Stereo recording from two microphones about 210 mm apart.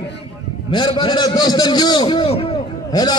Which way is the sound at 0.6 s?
25° left (ahead or behind).